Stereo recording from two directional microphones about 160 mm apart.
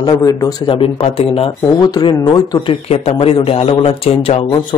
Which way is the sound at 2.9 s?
40° left (ahead or behind).